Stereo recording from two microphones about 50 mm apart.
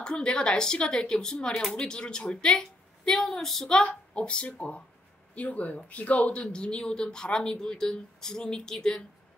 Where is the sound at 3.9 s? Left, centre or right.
Left.